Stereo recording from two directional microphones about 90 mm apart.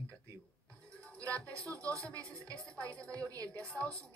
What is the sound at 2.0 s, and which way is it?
Speech, 15° left (ahead or behind).